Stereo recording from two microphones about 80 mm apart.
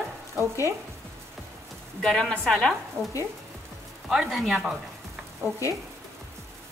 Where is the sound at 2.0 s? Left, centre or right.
Centre.